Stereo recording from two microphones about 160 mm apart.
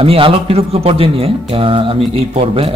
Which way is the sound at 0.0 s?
35° right (ahead or behind).